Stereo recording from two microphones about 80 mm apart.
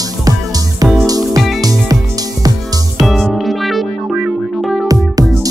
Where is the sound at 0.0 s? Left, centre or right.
Right.